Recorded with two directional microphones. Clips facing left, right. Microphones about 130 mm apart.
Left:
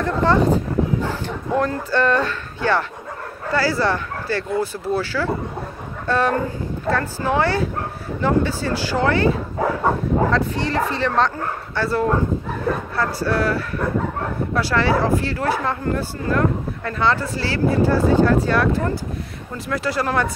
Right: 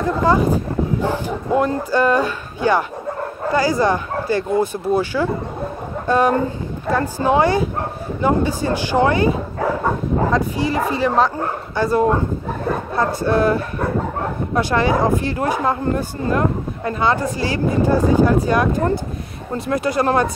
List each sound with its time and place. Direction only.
0.0 s speech: 10° right (ahead or behind)